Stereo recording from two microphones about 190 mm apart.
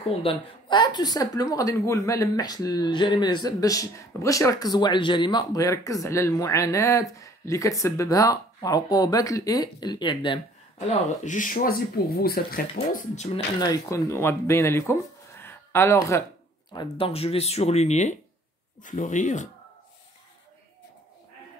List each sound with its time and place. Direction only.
0.2 s a woman's voice: 25° left (ahead or behind)
10.9 s speech: 40° left (ahead or behind)
13.6 s speech: 15° left (ahead or behind)
16.7 s speech: 30° left (ahead or behind)